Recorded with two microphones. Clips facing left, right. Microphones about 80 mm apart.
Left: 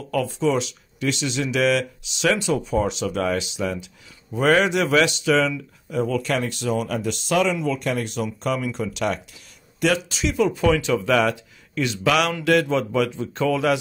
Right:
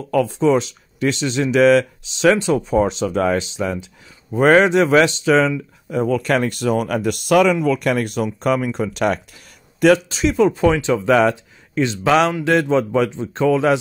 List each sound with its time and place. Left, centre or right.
0.1 s speech: right